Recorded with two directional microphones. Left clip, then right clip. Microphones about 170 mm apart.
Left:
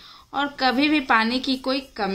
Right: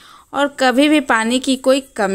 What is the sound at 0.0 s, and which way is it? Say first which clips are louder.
A woman's voice: right 7 dB; 35° right (ahead or behind).